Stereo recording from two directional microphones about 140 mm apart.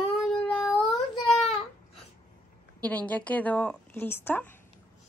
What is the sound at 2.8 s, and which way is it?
A woman's voice, 10° left (ahead or behind).